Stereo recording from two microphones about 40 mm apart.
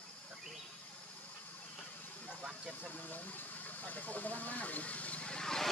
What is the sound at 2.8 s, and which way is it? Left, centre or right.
Speech, left.